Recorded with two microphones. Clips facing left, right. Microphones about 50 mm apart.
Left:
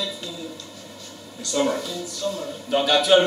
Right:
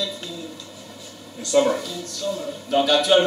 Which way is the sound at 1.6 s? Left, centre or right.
Centre.